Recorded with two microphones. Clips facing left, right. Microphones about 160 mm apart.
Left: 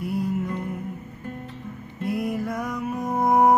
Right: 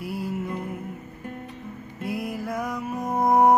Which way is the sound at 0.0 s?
5° right (ahead or behind).